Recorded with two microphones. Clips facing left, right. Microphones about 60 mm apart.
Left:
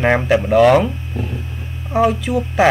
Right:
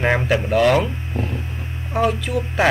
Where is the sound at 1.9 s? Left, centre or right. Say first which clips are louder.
Left 4 dB; centre.